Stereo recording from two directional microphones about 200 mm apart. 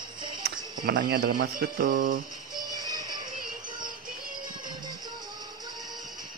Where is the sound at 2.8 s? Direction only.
20° right (ahead or behind).